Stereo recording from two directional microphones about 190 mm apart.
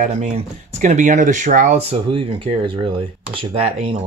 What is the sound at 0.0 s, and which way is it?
Speech, 40° right (ahead or behind).